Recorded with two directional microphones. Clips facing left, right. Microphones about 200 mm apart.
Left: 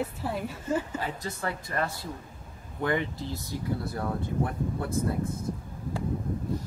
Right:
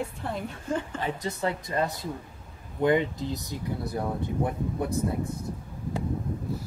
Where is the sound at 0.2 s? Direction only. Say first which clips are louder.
Left 1 dB; 5° left (ahead or behind).